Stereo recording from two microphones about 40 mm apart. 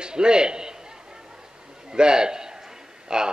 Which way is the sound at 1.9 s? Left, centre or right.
Right.